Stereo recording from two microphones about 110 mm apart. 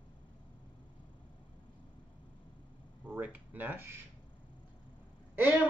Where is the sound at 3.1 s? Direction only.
15° right (ahead or behind).